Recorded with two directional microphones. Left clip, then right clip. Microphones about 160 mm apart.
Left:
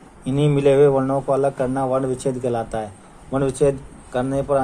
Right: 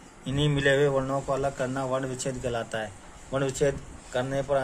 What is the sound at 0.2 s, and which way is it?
A man's voice, 15° left (ahead or behind).